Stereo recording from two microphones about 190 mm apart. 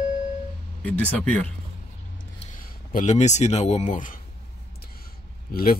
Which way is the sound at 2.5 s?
45° left (ahead or behind).